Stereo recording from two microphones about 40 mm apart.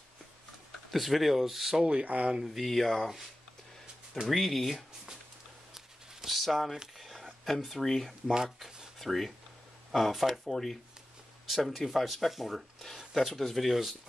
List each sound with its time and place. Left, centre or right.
0.9 s speech: centre
2.0 s speech: right
2.3 s speech: centre
2.7 s speech: centre
4.3 s speech: centre
5.8 s a sound: centre
8.5 s speech: centre